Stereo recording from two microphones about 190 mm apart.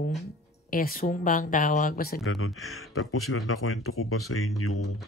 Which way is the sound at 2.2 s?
90° left.